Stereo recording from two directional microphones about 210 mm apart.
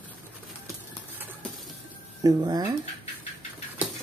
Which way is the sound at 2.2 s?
20° right (ahead or behind).